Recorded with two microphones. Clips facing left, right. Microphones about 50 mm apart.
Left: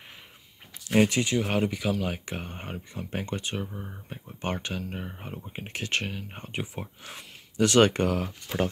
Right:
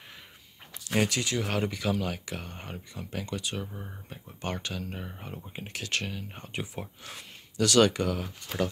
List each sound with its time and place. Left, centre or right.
0.8 s speech: left; by 2.1 s centre
2.1 s speech: left
3.6 s speech: centre
4.1 s speech: left
7.5 s speech: left
7.9 s speech: left